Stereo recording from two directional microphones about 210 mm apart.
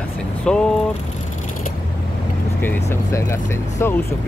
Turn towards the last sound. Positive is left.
turn(degrees=10)  # may be behind; listen again after turning